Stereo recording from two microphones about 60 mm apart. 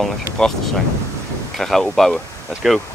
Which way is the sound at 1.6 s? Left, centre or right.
Centre.